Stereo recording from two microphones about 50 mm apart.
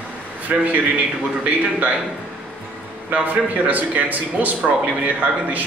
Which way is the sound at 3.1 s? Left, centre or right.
Right.